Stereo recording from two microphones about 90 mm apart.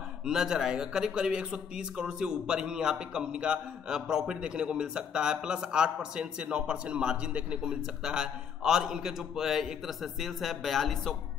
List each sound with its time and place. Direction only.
0.2 s speech: 5° right (ahead or behind)